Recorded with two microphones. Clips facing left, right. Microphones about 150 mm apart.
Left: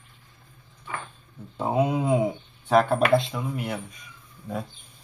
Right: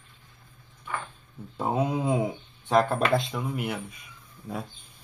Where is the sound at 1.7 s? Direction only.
Centre (ahead or behind).